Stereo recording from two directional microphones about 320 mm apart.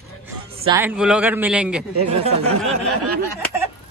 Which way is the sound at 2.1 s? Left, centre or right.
Centre.